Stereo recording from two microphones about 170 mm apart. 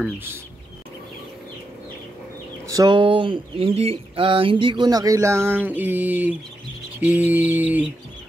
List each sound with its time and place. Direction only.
2.7 s speech: 25° right (ahead or behind); by 6.3 s 10° right (ahead or behind)
7.0 s bird: 10° right (ahead or behind)